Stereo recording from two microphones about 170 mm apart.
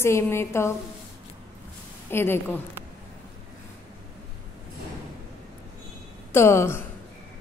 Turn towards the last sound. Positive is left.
turn(degrees=15)  # may be behind; listen again after turning